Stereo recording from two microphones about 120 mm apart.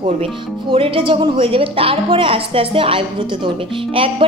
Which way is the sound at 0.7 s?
50° right (ahead or behind).